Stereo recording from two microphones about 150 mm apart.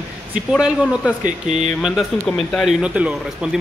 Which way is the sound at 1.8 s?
Centre (ahead or behind).